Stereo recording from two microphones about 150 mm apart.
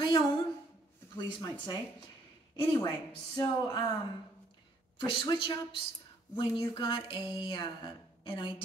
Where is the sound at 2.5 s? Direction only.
30° left (ahead or behind).